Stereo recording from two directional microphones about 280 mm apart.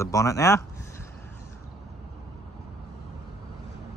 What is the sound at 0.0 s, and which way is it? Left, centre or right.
Speech, centre.